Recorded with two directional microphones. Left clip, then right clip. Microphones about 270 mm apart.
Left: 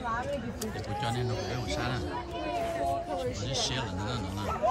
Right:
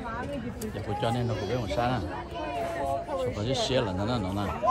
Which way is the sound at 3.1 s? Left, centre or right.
Centre.